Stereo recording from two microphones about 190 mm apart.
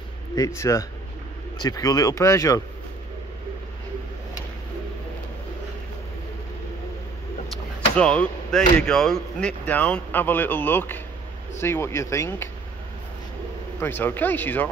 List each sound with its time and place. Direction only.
0.4 s speech: 15° left (ahead or behind)
7.9 s speech: 5° left (ahead or behind)
13.7 s speech: 10° left (ahead or behind)